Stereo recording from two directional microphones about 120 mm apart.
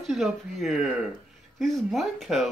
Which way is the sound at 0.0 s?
Centre (ahead or behind).